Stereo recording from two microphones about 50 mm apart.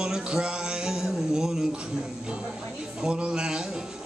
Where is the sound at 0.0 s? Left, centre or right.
Centre.